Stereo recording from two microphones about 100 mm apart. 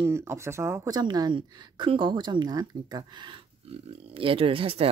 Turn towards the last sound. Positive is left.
turn(degrees=-65)  # may be behind; listen again after turning